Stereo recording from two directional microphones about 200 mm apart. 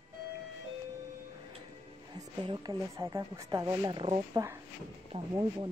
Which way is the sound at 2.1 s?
20° right (ahead or behind).